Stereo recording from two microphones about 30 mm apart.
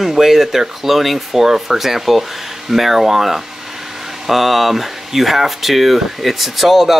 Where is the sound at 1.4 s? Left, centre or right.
Centre.